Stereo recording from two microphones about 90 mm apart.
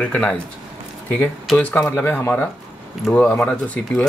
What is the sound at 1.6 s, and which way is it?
Speech, 15° left (ahead or behind).